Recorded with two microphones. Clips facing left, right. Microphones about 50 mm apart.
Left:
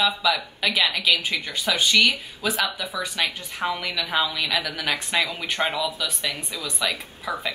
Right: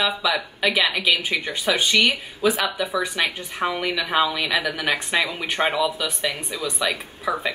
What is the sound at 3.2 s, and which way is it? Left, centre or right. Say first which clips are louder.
Speech: right 2 dB; right.